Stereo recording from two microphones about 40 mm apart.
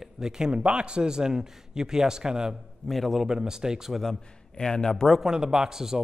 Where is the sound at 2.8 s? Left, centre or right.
Centre.